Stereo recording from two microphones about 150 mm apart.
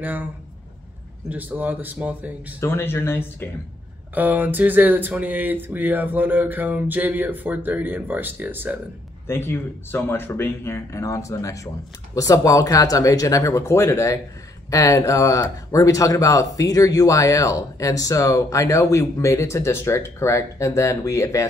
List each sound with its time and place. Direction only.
0.0 s speech: 10° right (ahead or behind)
1.3 s speech: 10° right (ahead or behind)
2.6 s speech: 15° left (ahead or behind)
4.1 s speech: 10° right (ahead or behind)
9.3 s speech: 15° left (ahead or behind)